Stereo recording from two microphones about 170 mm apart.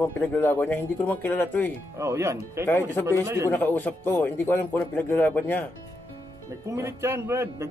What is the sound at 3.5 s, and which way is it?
Speech, 10° left (ahead or behind).